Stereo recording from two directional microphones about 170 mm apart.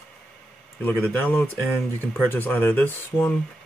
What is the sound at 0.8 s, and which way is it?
Speech, 10° left (ahead or behind).